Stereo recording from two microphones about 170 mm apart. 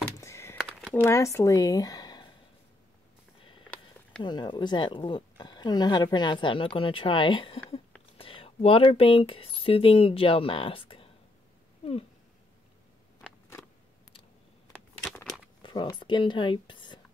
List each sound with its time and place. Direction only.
0.2 s a sound: 15° left (ahead or behind)
0.6 s a sound: centre (ahead or behind)
1.0 s speech: 15° left (ahead or behind)
4.2 s speech: 25° left (ahead or behind)
15.2 s crumpling: centre (ahead or behind)
15.6 s speech: 25° left (ahead or behind)